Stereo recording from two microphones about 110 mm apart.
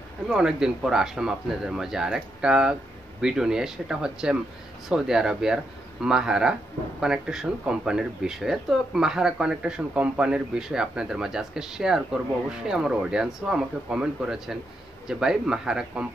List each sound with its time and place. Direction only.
0.3 s speech: 5° right (ahead or behind)